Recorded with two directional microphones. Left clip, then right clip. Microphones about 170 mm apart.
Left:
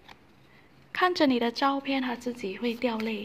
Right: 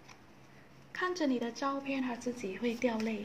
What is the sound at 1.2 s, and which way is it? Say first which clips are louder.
A woman's voice: left 9 dB; 40° left (ahead or behind).